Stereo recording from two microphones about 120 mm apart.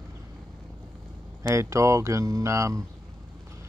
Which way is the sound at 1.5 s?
25° right (ahead or behind).